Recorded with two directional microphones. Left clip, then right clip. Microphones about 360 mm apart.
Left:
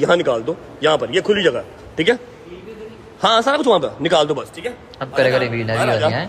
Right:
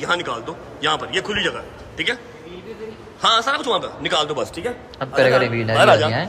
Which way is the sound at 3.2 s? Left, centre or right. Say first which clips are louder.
Left 3 dB; centre.